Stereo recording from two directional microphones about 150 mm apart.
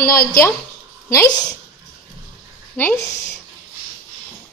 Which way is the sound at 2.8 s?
10° left (ahead or behind).